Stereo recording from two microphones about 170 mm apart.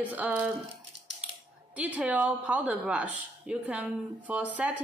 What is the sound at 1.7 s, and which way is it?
A woman's voice, 10° right (ahead or behind).